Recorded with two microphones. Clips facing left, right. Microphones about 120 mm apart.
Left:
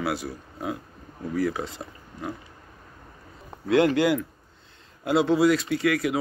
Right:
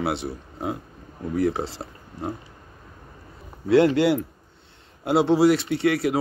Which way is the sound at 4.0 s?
30° right (ahead or behind).